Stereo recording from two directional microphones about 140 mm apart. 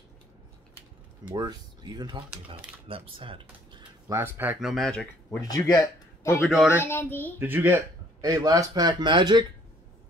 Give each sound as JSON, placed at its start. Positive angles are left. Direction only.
{"t": 1.3, "sound": "speech", "side_deg": -30}
{"t": 4.1, "sound": "speech", "side_deg": -15}
{"t": 4.6, "sound": "speech", "side_deg": 0}
{"t": 5.4, "sound": "a child's voice", "side_deg": 25}
{"t": 7.3, "sound": "a man's voice", "side_deg": -15}